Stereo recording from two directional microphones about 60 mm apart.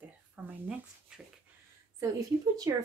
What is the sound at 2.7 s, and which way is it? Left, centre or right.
Speech, right.